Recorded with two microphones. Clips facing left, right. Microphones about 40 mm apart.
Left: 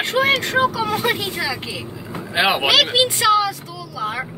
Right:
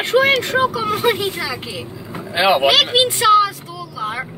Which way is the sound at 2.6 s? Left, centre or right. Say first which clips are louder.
Right 2 dB; centre.